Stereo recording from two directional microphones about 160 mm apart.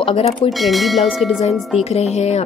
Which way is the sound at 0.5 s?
Centre (ahead or behind).